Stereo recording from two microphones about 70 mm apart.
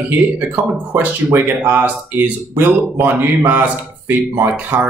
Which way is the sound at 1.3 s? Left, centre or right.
Right.